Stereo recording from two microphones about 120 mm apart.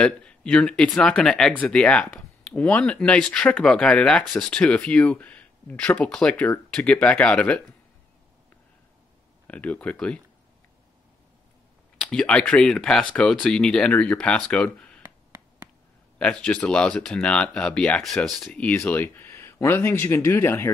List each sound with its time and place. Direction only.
0.0 s speech: 10° left (ahead or behind)
9.5 s speech: 10° left (ahead or behind)
12.0 s speech: 5° left (ahead or behind)
16.2 s speech: 10° left (ahead or behind)